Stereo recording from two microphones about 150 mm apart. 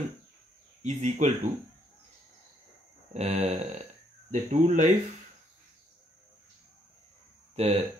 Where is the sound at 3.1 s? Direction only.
45° right (ahead or behind).